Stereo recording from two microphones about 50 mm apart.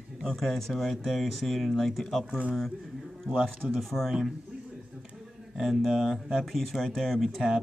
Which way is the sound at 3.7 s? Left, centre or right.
Centre.